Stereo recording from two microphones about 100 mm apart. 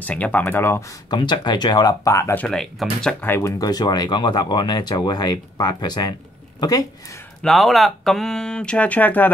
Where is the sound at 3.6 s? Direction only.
40° left (ahead or behind).